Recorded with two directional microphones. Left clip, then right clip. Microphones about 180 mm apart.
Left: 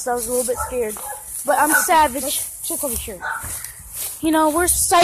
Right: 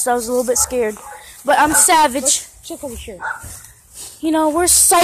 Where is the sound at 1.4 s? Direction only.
40° right (ahead or behind).